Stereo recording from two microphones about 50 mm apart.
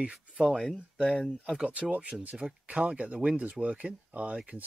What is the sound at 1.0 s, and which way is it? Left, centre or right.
Speech, left.